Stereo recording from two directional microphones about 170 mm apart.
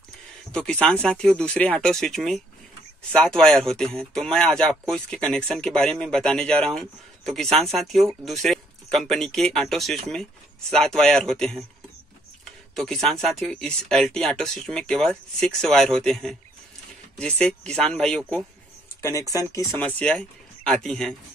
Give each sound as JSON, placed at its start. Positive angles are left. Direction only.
{"t": 0.5, "sound": "speech", "side_deg": 5}
{"t": 12.7, "sound": "speech", "side_deg": 0}
{"t": 18.9, "sound": "speech", "side_deg": 20}